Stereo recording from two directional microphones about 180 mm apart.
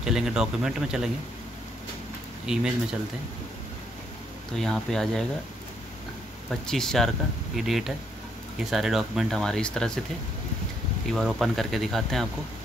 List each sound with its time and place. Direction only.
0.0 s speech: 5° right (ahead or behind)
2.4 s speech: 5° right (ahead or behind)
4.6 s speech: centre (ahead or behind)
6.5 s speech: centre (ahead or behind)
11.1 s speech: centre (ahead or behind)